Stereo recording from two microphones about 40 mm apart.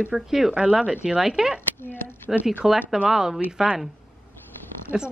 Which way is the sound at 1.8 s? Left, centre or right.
Left.